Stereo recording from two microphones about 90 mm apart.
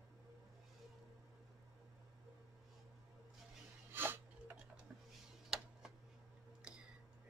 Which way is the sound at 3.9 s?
25° right (ahead or behind).